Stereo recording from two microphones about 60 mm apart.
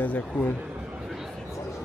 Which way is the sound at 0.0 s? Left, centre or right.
Left.